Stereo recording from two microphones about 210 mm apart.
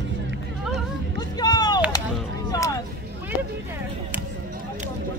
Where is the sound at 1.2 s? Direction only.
20° left (ahead or behind).